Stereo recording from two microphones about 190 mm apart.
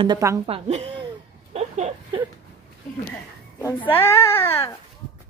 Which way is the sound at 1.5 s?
35° right (ahead or behind).